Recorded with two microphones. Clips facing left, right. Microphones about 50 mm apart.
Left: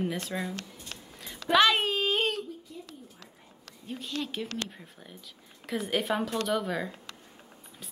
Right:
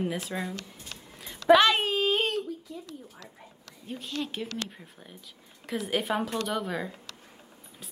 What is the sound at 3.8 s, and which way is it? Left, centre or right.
A woman's voice, centre.